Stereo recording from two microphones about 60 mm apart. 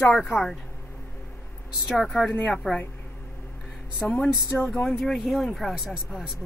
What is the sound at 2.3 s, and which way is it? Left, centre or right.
Speech, left.